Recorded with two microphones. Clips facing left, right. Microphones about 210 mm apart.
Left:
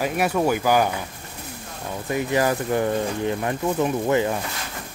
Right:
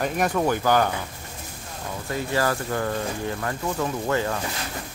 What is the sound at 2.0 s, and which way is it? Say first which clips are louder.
Speech: left 3 dB; 15° left (ahead or behind).